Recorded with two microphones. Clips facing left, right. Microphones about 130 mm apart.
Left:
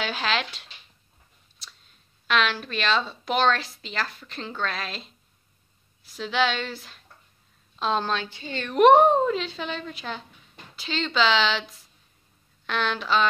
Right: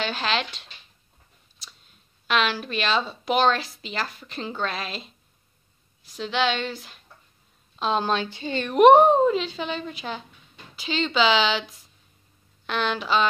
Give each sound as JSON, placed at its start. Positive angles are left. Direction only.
{"t": 0.0, "sound": "a woman's voice", "side_deg": 5}
{"t": 1.6, "sound": "clicking", "side_deg": -5}
{"t": 2.2, "sound": "a woman's voice", "side_deg": -5}
{"t": 8.1, "sound": "speech", "side_deg": -20}
{"t": 8.7, "sound": "a woman's voice", "side_deg": -5}
{"t": 12.6, "sound": "a woman's voice", "side_deg": -5}